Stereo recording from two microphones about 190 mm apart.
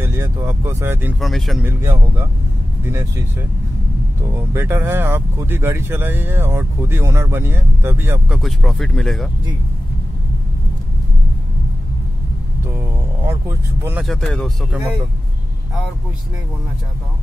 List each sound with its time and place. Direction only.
0.0 s speech: 15° right (ahead or behind)
1.2 s speech: centre (ahead or behind)
1.7 s speech: 15° right (ahead or behind)
8.4 s speech: centre (ahead or behind)
13.2 s speech: 15° right (ahead or behind)
14.0 s speech: 5° left (ahead or behind)